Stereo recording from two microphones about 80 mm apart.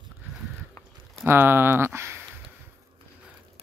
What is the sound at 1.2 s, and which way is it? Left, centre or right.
Speech, right.